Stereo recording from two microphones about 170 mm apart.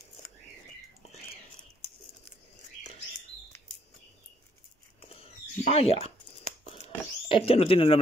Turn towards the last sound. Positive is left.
turn(degrees=35)  # may be behind; listen again after turning